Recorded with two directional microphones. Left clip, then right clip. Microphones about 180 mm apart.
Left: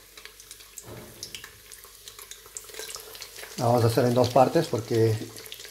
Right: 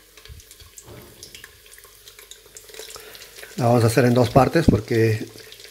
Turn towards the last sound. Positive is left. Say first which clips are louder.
# right 5 dB
turn(degrees=-30)  # may be behind; listen again after turning